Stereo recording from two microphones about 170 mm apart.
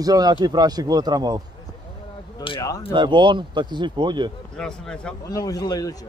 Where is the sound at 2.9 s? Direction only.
25° right (ahead or behind).